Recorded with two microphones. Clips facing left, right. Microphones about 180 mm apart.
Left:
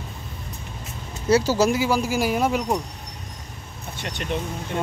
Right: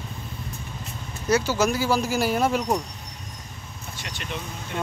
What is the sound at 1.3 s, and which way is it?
Speech, 35° left (ahead or behind).